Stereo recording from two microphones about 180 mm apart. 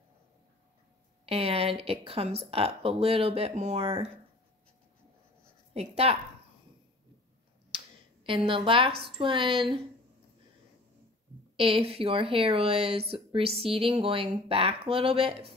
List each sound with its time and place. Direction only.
1.2 s speech: 30° right (ahead or behind)
5.7 s a woman's voice: 35° right (ahead or behind)
7.7 s finger snapping: 30° right (ahead or behind)
9.0 s speech: 30° right (ahead or behind)
11.5 s speech: 30° right (ahead or behind)